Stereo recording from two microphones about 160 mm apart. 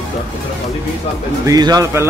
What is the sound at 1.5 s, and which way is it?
Speech, 25° right (ahead or behind).